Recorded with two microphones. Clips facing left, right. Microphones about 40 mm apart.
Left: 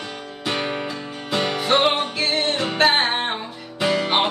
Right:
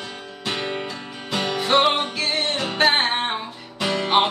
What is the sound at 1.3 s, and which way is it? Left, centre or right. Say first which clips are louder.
Music: left 2 dB; left.